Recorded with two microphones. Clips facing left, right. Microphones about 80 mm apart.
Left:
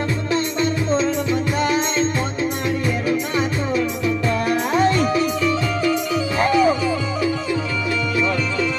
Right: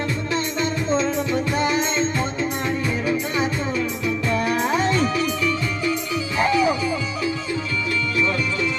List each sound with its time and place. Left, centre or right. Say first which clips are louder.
6.3 s music: left 2 dB; left